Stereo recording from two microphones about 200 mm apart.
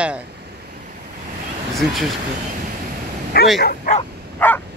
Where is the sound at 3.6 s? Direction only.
40° left (ahead or behind).